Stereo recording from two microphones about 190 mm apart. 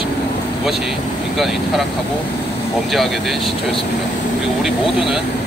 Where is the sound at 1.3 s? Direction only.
Centre (ahead or behind).